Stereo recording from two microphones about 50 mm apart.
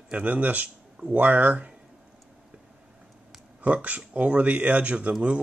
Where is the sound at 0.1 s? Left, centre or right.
Right.